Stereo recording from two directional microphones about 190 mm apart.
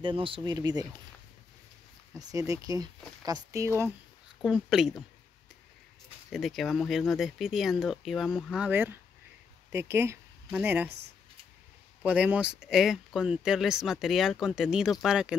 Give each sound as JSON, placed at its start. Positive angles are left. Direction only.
{"t": 0.0, "sound": "speech", "side_deg": -25}
{"t": 2.1, "sound": "speech", "side_deg": -15}
{"t": 4.4, "sound": "speech", "side_deg": 0}
{"t": 6.3, "sound": "speech", "side_deg": 0}
{"t": 12.0, "sound": "speech", "side_deg": -5}